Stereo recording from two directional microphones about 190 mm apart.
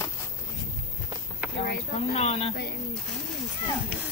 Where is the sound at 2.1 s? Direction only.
35° left (ahead or behind).